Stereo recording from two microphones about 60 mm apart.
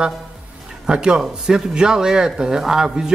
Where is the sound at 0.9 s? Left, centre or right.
Centre.